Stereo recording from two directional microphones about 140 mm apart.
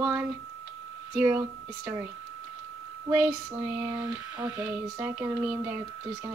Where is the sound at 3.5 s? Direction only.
15° right (ahead or behind).